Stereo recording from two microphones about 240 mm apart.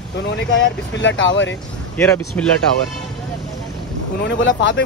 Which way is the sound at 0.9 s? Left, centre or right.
Left.